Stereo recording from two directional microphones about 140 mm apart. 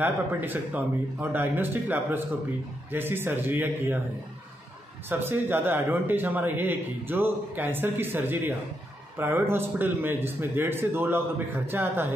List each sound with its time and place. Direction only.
0.0 s a man's voice: 15° right (ahead or behind)
5.2 s a man's voice: 15° right (ahead or behind)